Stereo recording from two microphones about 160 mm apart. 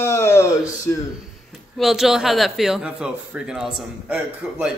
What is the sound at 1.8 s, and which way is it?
A man's voice, centre (ahead or behind).